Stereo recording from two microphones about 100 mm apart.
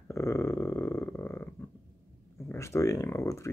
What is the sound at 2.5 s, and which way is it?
Speech, 30° left (ahead or behind).